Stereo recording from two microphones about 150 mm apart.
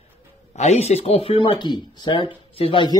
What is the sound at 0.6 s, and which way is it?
Speech, 45° left (ahead or behind).